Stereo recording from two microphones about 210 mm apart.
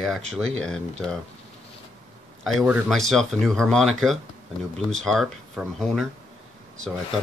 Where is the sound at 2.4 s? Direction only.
5° right (ahead or behind).